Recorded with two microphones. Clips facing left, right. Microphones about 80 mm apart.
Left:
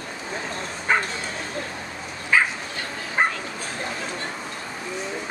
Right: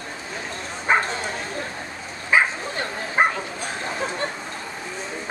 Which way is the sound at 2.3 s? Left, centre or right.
Centre.